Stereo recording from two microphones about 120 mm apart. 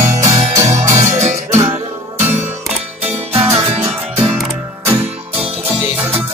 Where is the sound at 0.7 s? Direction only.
90° right.